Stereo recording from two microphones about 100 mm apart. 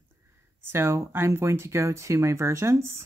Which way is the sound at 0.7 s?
25° right (ahead or behind).